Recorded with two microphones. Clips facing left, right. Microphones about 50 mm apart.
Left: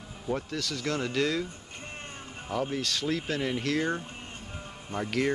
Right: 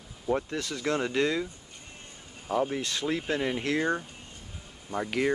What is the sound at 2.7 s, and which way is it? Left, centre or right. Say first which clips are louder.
Speech: even; right.